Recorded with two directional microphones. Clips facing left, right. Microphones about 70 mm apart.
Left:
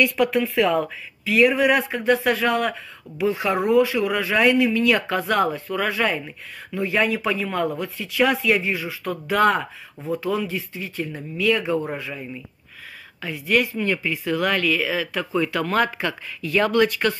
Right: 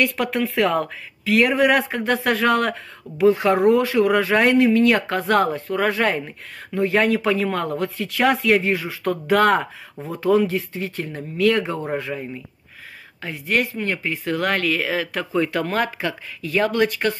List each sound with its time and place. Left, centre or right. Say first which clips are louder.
0.0 s speech: left 2 dB; right
15.3 s speech: even; right